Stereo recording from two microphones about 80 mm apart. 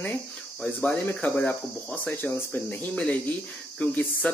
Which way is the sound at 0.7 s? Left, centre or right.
Left.